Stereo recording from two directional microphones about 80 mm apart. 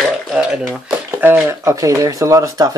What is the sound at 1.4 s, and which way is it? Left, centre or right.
Speech, right.